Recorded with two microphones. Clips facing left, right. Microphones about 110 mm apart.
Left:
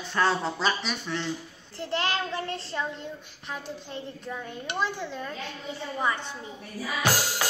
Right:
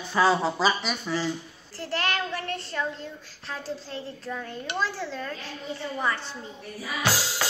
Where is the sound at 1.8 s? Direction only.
25° left (ahead or behind).